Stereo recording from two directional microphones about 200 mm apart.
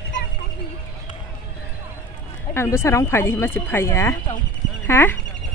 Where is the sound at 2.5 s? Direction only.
15° left (ahead or behind).